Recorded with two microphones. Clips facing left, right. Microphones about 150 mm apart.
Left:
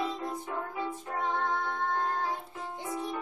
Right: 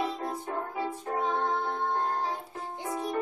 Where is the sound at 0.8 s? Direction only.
35° right (ahead or behind).